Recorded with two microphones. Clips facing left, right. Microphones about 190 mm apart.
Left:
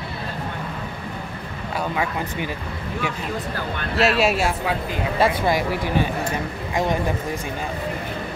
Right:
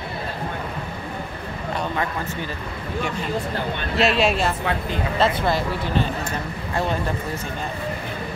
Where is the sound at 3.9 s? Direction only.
5° left (ahead or behind).